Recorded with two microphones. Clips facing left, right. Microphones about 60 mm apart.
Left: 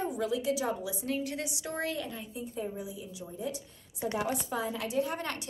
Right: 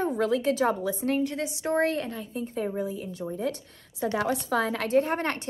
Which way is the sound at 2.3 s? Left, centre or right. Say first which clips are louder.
Right 6 dB; right.